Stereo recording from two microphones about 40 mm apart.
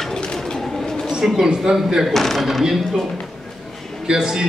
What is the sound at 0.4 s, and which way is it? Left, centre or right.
Bird, centre.